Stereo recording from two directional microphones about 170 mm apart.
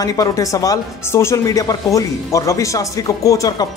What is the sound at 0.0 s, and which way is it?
Speech, 20° left (ahead or behind).